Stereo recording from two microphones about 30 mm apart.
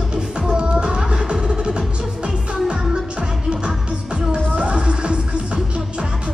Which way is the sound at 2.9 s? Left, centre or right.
Right.